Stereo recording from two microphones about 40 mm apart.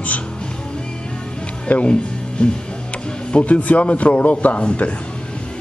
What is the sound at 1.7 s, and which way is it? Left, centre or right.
A man's voice, left.